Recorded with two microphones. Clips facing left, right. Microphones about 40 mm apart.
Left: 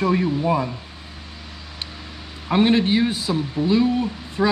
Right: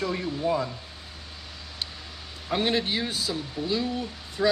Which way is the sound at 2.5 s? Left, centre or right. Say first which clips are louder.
Left 8 dB; left.